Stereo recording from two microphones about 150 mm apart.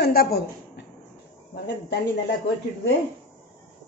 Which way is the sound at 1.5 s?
90° left.